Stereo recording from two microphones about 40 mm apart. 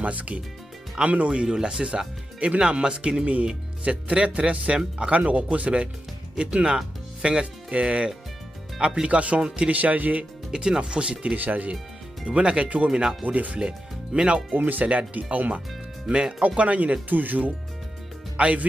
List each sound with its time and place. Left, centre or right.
0.0 s speech: right
5.1 s speech: right
10.5 s speech: centre
11.3 s speech: right
12.3 s speech: right
13.2 s speech: right
13.6 s speech: right
14.5 s speech: right
14.9 s speech: right
16.1 s speech: right
16.4 s speech: right
17.1 s speech: right
18.3 s speech: right